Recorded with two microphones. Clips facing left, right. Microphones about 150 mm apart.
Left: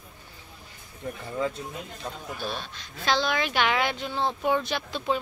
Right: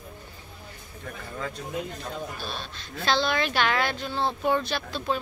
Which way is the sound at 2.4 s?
15° left (ahead or behind).